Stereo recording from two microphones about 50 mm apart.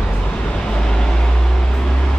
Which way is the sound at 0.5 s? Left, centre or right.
Centre.